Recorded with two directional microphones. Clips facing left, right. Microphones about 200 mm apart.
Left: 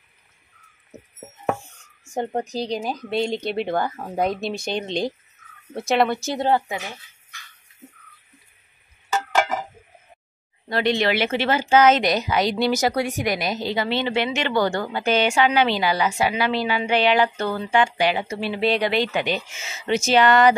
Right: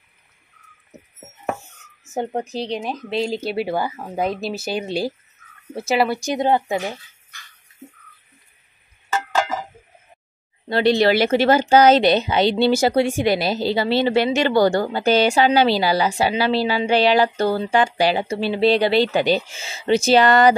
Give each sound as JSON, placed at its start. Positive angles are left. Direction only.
{"t": 0.9, "sound": "a sound", "side_deg": 5}
{"t": 2.1, "sound": "speech", "side_deg": -5}
{"t": 6.1, "sound": "speech", "side_deg": -15}
{"t": 10.7, "sound": "a woman's voice", "side_deg": -35}